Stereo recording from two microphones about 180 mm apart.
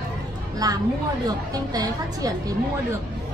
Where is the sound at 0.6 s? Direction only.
20° right (ahead or behind).